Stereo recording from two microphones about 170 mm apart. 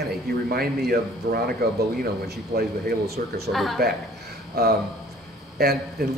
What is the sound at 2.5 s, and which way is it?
Speech, 60° right (ahead or behind).